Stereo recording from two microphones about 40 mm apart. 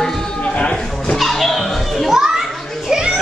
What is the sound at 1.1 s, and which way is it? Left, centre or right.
Children playing, centre.